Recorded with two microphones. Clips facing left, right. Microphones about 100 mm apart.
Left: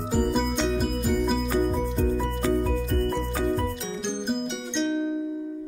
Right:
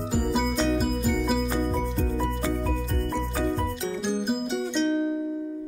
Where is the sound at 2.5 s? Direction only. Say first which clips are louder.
Left 3 dB; centre (ahead or behind).